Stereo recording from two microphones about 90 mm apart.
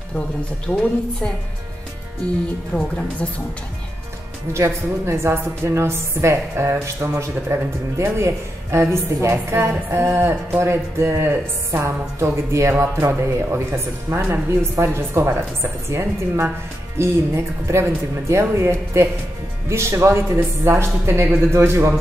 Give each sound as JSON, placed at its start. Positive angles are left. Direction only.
{"t": 0.7, "sound": "a woman's voice", "side_deg": 20}
{"t": 2.7, "sound": "a woman's voice", "side_deg": 5}
{"t": 4.6, "sound": "music", "side_deg": -30}
{"t": 17.6, "sound": "speech", "side_deg": -30}
{"t": 19.7, "sound": "music", "side_deg": -30}